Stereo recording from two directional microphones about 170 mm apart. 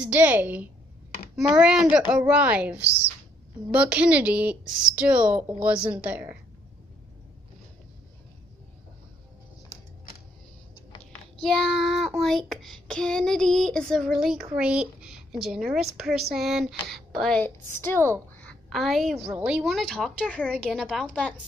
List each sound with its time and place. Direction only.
0.0 s a woman's voice: 10° right (ahead or behind)
11.4 s a woman's voice: centre (ahead or behind)
18.4 s a sound: 5° left (ahead or behind)
19.2 s speech: 5° right (ahead or behind)